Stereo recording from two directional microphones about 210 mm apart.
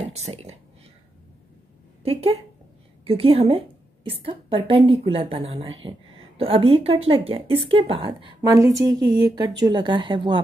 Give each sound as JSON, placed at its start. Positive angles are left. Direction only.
{"t": 0.0, "sound": "speech", "side_deg": -30}
{"t": 2.0, "sound": "speech", "side_deg": -30}